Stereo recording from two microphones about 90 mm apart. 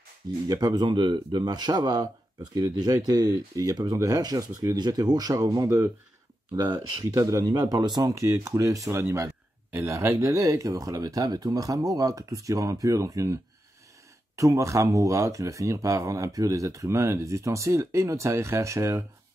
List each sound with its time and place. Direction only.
0.5 s speech: 45° right (ahead or behind)
7.2 s speech: 35° right (ahead or behind)
7.8 s speech: 50° right (ahead or behind)
8.1 s speech: 35° right (ahead or behind)